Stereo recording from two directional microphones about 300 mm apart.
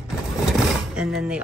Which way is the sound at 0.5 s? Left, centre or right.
Centre.